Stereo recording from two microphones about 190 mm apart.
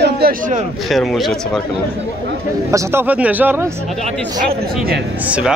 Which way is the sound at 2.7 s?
10° right (ahead or behind).